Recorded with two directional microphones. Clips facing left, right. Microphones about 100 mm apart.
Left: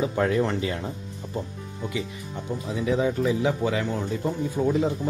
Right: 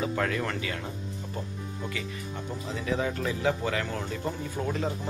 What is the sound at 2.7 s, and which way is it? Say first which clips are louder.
Speech: left 6 dB; 15° left (ahead or behind).